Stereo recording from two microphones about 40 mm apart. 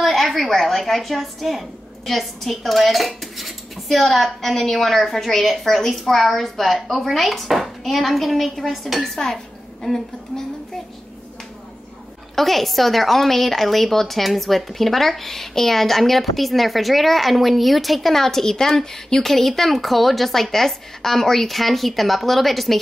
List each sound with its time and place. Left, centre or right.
0.0 s a woman's voice: centre
12.4 s a woman's voice: centre